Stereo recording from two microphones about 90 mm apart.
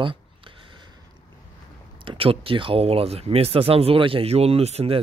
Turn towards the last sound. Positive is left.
turn(degrees=-90)